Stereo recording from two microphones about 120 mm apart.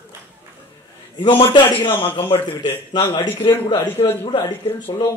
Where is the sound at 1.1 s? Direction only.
40° left (ahead or behind).